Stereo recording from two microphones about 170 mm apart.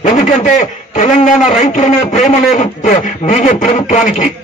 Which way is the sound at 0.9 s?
45° left (ahead or behind).